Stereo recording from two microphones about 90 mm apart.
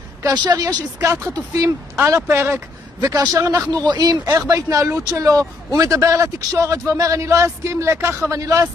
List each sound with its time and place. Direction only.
0.2 s a woman's voice: 50° right (ahead or behind)
0.9 s speech: 30° right (ahead or behind)
1.3 s a woman's voice: 40° right (ahead or behind)
2.0 s a man's voice: 30° right (ahead or behind)
3.7 s a woman's voice: 50° right (ahead or behind)
4.4 s a man's voice: 35° right (ahead or behind)